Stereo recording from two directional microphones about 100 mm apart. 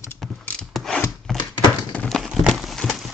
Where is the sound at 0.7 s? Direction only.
5° left (ahead or behind).